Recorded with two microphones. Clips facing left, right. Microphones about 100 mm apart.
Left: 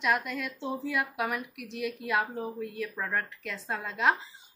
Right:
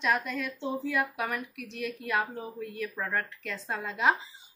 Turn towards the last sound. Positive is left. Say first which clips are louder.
# even
turn(degrees=0)  # may be behind; listen again after turning